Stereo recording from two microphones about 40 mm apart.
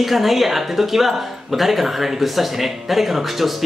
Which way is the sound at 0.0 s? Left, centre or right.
Centre.